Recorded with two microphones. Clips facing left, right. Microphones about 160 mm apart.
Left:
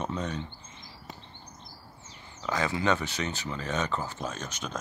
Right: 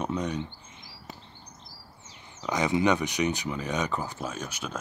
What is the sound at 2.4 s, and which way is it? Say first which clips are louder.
Speech: right 4 dB; 20° right (ahead or behind).